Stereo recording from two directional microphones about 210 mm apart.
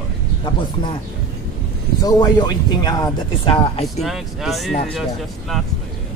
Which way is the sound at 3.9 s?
Centre (ahead or behind).